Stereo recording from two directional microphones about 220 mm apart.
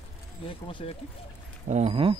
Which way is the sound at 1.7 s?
30° right (ahead or behind).